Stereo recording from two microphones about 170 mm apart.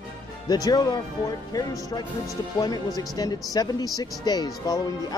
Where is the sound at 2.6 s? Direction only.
20° left (ahead or behind).